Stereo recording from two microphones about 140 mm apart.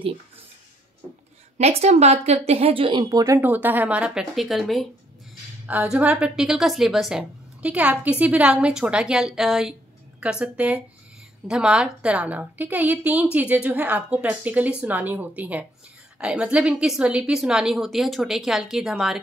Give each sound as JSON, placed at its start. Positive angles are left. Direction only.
{"t": 1.6, "sound": "a woman's voice", "side_deg": -50}
{"t": 3.3, "sound": "a woman's voice", "side_deg": -15}
{"t": 5.7, "sound": "a woman's voice", "side_deg": -10}